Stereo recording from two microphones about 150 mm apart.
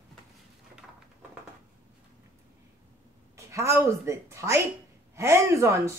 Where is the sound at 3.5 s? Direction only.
20° right (ahead or behind).